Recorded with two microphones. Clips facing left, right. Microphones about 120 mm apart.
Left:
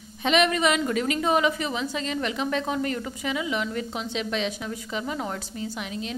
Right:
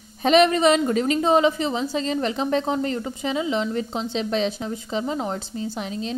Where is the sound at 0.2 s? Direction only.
35° right (ahead or behind).